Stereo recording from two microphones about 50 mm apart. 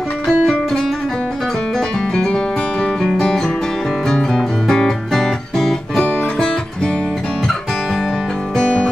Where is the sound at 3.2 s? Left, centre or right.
Centre.